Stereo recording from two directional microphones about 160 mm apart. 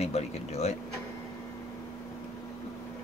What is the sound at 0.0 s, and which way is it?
Speech, 40° left (ahead or behind).